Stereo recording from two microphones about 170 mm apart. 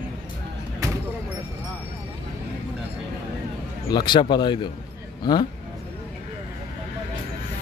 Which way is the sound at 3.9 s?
25° left (ahead or behind).